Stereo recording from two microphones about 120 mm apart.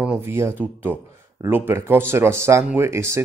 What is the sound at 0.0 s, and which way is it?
Speech, 15° right (ahead or behind).